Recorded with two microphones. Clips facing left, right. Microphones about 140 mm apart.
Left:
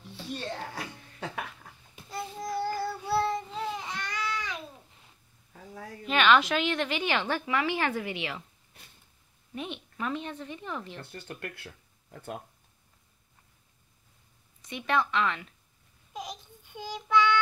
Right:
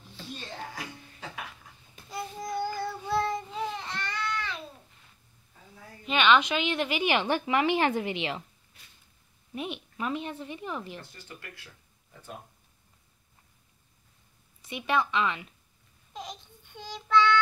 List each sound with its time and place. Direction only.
0.7 s a sound: 55° left (ahead or behind)
2.0 s child singing: centre (ahead or behind)
5.5 s a sound: 65° left (ahead or behind)
6.0 s a woman's voice: centre (ahead or behind); by 8.5 s 25° right (ahead or behind)
9.6 s a woman's voice: 15° right (ahead or behind)
11.0 s speech: 60° left (ahead or behind)
14.6 s a woman's voice: 5° right (ahead or behind)
16.1 s child singing: 10° left (ahead or behind)